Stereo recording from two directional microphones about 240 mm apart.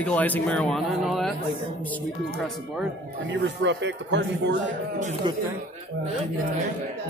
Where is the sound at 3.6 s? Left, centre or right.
Right.